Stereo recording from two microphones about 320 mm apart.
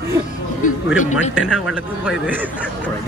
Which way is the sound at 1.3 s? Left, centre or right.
Centre.